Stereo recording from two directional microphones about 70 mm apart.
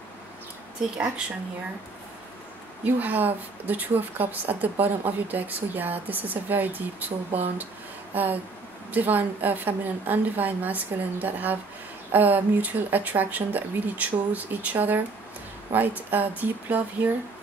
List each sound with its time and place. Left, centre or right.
0.9 s speech: centre
2.8 s a woman's voice: right
8.1 s a sound: right
8.9 s a woman's voice: right